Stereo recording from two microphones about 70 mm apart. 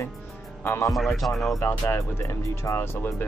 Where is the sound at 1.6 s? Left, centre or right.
Left.